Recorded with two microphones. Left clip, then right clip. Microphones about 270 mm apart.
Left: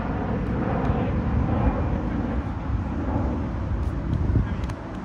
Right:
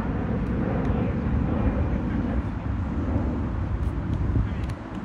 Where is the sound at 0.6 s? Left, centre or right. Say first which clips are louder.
Left 3 dB; left.